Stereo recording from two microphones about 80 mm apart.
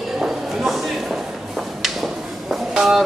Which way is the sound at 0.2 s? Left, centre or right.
Centre.